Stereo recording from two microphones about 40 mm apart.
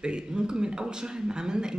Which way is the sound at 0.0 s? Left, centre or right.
Right.